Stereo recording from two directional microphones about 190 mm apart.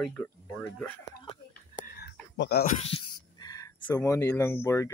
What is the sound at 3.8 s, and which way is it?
Speech, 15° left (ahead or behind).